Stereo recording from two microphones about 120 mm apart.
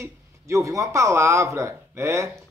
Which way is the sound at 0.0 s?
25° right (ahead or behind).